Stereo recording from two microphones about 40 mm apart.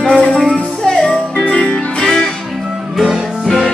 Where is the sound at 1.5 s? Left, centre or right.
Left.